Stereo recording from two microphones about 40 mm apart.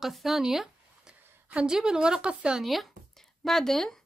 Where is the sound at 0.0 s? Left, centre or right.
Centre.